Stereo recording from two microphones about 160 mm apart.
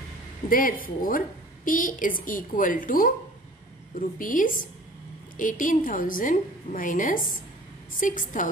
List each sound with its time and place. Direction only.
0.5 s a woman's voice: 60° left (ahead or behind)